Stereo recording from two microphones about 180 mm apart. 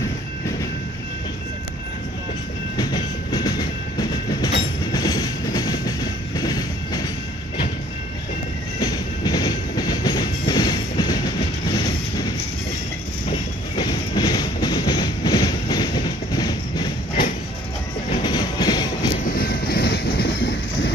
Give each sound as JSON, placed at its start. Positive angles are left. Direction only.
{"t": 2.8, "sound": "train", "side_deg": 20}
{"t": 8.7, "sound": "train", "side_deg": 20}
{"t": 13.3, "sound": "train", "side_deg": 25}
{"t": 18.1, "sound": "music", "side_deg": 25}
{"t": 19.2, "sound": "vehicle", "side_deg": 55}